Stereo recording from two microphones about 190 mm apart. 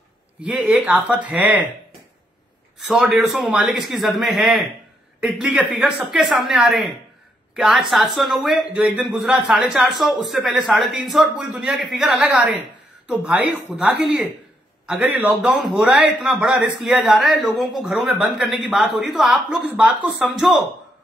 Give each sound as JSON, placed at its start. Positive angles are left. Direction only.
{"t": 0.4, "sound": "speech", "side_deg": -5}
{"t": 2.9, "sound": "speech", "side_deg": -5}